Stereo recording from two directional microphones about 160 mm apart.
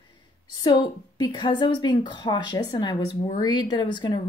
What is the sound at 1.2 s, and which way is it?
Speech, 30° left (ahead or behind).